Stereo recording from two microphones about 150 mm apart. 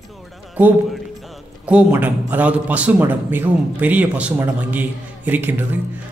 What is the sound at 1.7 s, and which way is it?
Speech, 10° right (ahead or behind).